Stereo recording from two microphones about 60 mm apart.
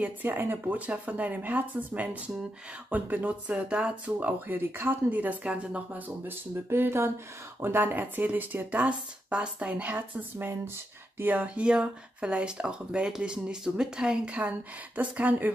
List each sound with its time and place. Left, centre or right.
0.0 s speech: right
4.5 s speech: right
5.1 s speech: right
7.6 s speech: right
11.1 s speech: right